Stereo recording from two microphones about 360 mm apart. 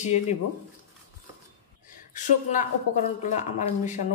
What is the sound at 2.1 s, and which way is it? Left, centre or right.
Speech, left.